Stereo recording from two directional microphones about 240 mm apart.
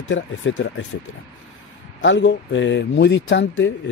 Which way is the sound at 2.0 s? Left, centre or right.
Left.